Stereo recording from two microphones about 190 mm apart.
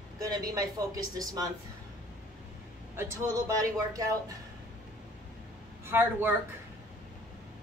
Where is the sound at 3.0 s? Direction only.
15° right (ahead or behind).